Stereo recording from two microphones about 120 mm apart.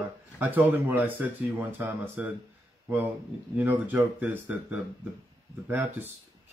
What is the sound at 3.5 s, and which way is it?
Speech, 15° right (ahead or behind).